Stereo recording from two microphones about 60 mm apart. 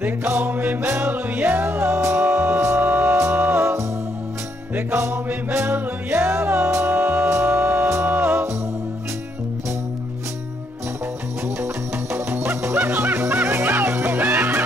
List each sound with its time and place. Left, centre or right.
0.0 s music: right
4.7 s music: right
11.4 s music: right